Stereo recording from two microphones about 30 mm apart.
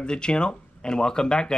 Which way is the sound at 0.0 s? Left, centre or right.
Left.